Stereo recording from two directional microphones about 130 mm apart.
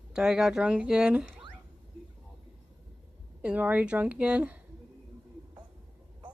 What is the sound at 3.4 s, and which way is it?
Speech, 10° right (ahead or behind).